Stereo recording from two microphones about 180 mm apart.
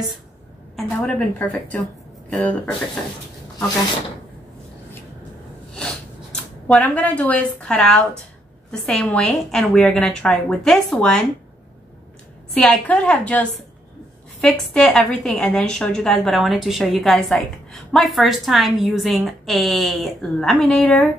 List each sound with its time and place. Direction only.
0.7 s a woman's voice: 5° left (ahead or behind)
2.2 s speech: 5° left (ahead or behind)
6.3 s a woman's voice: 5° left (ahead or behind)
12.5 s a woman's voice: 5° left (ahead or behind)